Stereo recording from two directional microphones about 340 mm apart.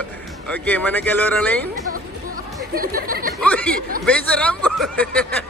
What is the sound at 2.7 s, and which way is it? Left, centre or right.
Speech, right.